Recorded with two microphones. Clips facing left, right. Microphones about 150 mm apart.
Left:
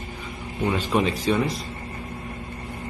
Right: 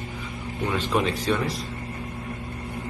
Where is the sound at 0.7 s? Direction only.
Centre (ahead or behind).